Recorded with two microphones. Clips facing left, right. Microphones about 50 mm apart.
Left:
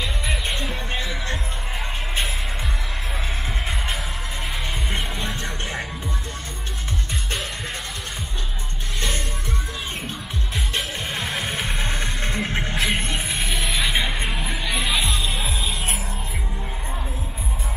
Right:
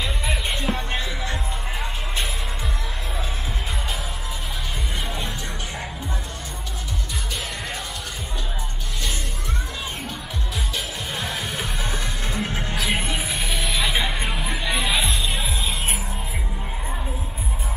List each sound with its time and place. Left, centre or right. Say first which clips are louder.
0.3 s music: right 3 dB; centre
11.1 s music: left 1 dB; centre
12.4 s music: left 1 dB; left
12.8 s music: right 1 dB; centre